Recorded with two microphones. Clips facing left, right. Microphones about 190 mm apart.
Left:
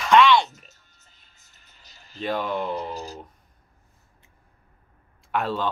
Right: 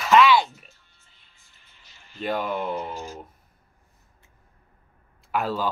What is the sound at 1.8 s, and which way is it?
Music, 40° left (ahead or behind).